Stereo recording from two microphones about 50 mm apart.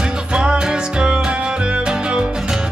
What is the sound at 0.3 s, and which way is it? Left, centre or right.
Music, centre.